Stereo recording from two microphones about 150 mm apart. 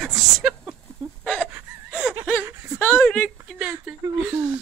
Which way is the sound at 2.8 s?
15° left (ahead or behind).